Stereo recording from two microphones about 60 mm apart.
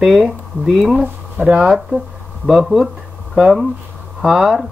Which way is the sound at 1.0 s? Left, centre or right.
Right.